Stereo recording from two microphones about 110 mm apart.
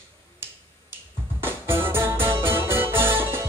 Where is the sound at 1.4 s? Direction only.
20° right (ahead or behind).